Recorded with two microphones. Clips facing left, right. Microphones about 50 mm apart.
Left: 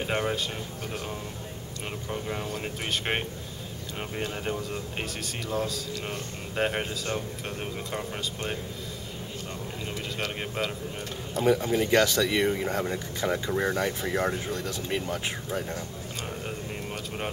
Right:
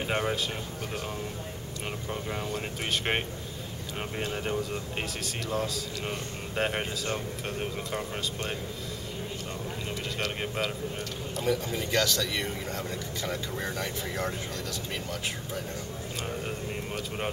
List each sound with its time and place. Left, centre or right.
0.0 s speech: centre
2.0 s speech: centre
10.1 s speech: centre
11.4 s speech: left
16.4 s vehicle: centre